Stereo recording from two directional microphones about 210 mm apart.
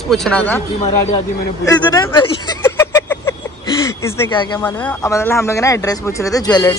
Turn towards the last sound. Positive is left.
turn(degrees=15)  # may be behind; listen again after turning